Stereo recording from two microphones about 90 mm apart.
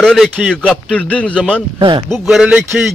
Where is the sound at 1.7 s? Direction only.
60° right (ahead or behind).